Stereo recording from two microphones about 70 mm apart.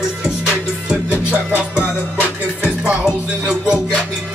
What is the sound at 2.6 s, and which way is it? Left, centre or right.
Music, centre.